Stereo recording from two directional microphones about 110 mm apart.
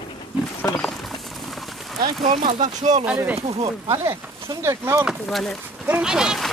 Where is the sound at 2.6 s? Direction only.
90° right.